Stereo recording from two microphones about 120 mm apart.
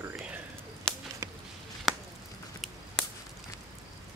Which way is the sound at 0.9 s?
5° left (ahead or behind).